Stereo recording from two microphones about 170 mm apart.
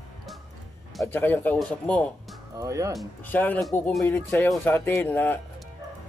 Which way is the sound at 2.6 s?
20° right (ahead or behind).